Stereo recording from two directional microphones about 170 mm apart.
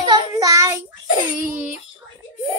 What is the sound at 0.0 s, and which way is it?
Child singing, 20° right (ahead or behind).